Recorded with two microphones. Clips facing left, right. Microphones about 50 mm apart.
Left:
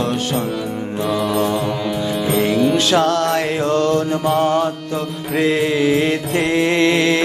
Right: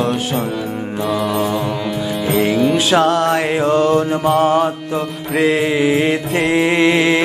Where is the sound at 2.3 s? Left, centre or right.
Centre.